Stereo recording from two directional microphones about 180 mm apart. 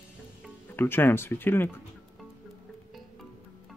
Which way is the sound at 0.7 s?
10° left (ahead or behind).